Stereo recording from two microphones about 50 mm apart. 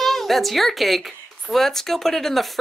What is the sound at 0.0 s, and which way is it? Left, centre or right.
A woman's voice, centre.